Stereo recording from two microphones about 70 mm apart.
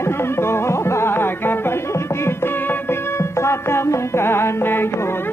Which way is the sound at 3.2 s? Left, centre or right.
Left.